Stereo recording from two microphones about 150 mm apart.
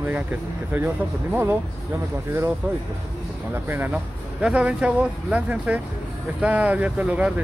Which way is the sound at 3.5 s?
15° right (ahead or behind).